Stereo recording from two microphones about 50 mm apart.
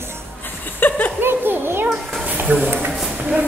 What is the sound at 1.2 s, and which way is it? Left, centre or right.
Children playing, right.